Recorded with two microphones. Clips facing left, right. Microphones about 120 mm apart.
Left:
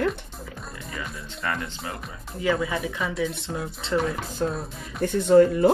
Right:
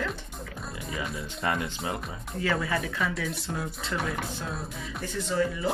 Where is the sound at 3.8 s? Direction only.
25° left (ahead or behind).